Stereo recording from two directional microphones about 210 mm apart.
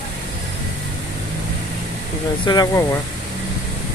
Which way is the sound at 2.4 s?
20° left (ahead or behind).